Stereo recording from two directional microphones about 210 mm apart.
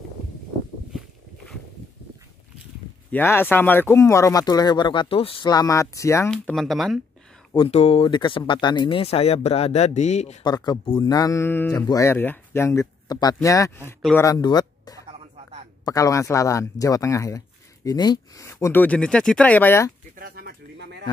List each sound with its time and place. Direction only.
3.1 s speech: 10° left (ahead or behind)
6.3 s speech: centre (ahead or behind)
7.5 s speech: 25° left (ahead or behind)
10.4 s speech: 20° left (ahead or behind)
15.1 s music: 30° right (ahead or behind)
15.8 s speech: 15° left (ahead or behind)
20.2 s bird: 45° right (ahead or behind)